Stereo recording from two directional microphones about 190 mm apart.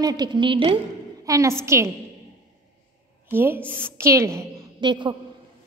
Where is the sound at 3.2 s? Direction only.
10° right (ahead or behind).